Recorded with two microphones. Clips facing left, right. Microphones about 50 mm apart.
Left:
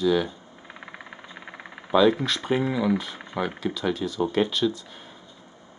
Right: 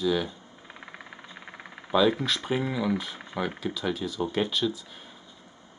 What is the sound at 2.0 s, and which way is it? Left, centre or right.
Speech, centre.